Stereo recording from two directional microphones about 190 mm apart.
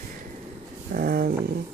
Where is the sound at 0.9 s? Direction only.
50° right (ahead or behind).